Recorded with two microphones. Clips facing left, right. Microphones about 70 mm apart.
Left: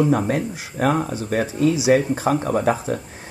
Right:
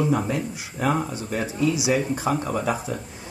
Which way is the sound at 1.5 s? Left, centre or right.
Left.